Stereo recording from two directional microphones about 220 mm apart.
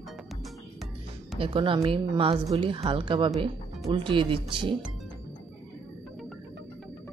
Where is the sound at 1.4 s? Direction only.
25° right (ahead or behind).